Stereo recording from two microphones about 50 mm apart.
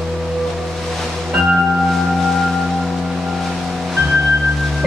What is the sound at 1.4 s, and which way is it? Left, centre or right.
Singing bowl, centre.